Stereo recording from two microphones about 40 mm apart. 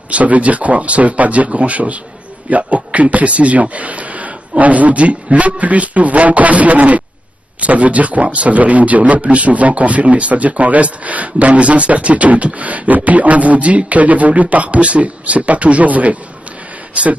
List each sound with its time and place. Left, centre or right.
0.1 s a man's voice: right